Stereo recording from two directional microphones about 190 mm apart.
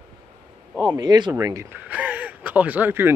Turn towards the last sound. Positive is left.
turn(degrees=-10)  # may be behind; listen again after turning